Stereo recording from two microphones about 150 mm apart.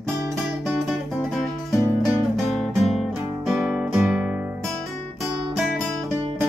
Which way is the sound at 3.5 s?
Centre (ahead or behind).